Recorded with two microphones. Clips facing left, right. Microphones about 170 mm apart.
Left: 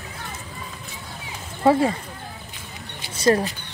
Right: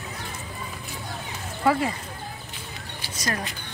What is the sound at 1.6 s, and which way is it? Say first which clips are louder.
Speech: left 5 dB; 30° left (ahead or behind).